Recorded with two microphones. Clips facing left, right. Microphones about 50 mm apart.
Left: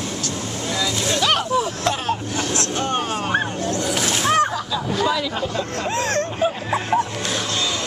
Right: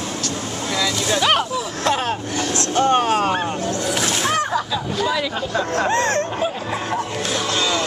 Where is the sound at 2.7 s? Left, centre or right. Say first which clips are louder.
Right 11 dB; right.